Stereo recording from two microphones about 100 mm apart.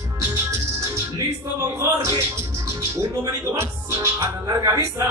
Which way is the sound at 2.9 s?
30° right (ahead or behind).